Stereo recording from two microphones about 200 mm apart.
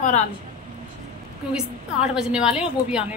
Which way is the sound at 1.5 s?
5° right (ahead or behind).